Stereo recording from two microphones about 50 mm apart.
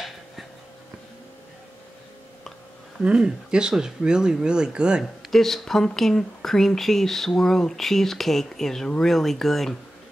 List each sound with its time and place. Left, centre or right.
3.0 s speech: centre
5.0 s speech: centre